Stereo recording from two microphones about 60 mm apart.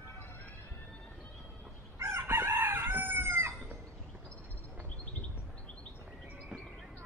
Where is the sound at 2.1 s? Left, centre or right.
Right.